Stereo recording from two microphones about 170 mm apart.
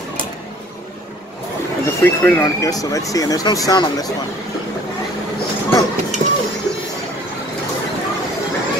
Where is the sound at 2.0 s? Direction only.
10° left (ahead or behind).